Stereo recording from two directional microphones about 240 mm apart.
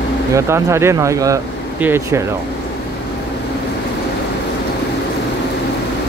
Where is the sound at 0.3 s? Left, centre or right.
Centre.